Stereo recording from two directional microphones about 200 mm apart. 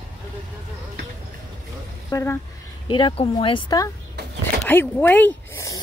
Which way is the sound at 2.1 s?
15° left (ahead or behind).